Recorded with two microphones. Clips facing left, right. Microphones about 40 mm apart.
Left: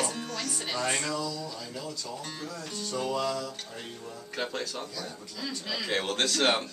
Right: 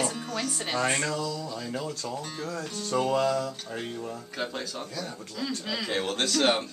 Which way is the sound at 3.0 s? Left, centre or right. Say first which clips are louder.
Right 5 dB; right.